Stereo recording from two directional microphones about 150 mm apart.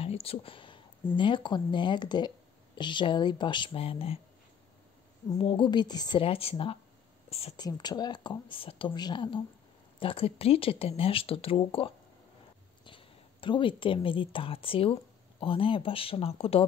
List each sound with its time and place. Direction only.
0.0 s speech: 40° left (ahead or behind)
5.4 s speech: 35° left (ahead or behind)
7.5 s speech: 25° left (ahead or behind)